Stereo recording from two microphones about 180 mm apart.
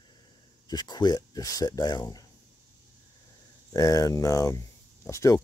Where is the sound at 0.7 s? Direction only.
25° left (ahead or behind).